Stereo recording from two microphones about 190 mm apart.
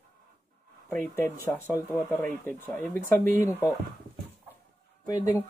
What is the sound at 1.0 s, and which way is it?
Speech, 10° left (ahead or behind).